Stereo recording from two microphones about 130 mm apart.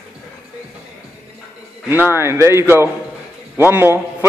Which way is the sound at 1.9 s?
15° right (ahead or behind).